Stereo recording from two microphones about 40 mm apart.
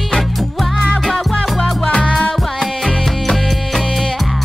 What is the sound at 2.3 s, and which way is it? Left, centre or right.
Music, centre.